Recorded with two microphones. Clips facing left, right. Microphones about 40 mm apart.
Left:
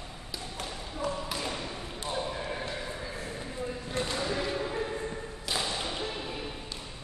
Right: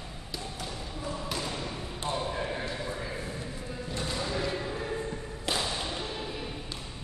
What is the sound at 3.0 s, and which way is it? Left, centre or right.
Horse, centre.